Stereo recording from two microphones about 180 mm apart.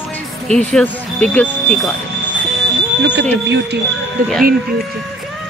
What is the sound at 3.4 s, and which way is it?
Speech, 75° right (ahead or behind).